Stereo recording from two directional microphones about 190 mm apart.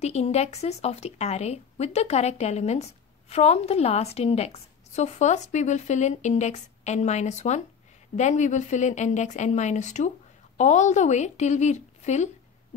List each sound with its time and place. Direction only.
0.0 s speech: 35° left (ahead or behind)